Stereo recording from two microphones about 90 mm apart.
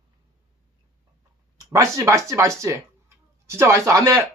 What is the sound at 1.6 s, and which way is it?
Speech, 40° right (ahead or behind).